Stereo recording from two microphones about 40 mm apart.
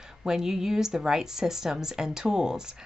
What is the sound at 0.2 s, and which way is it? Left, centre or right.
A woman's voice, centre.